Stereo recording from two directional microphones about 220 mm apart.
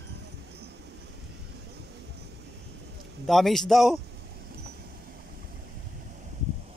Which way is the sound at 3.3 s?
Centre (ahead or behind).